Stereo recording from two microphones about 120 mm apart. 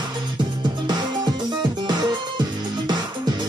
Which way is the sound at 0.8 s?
35° right (ahead or behind).